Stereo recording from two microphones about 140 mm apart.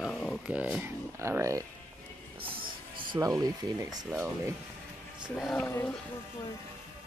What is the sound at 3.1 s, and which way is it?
Speech, 25° right (ahead or behind).